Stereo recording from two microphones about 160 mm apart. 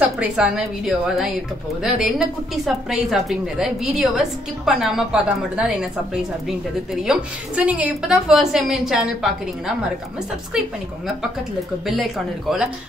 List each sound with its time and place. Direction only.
0.0 s a woman's voice: 5° right (ahead or behind)
11.8 s a woman's voice: centre (ahead or behind)